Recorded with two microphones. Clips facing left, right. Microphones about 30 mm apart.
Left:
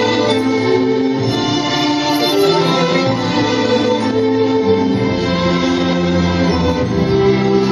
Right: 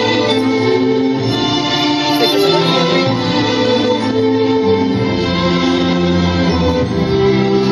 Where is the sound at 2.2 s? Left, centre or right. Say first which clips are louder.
Right 1 dB; right.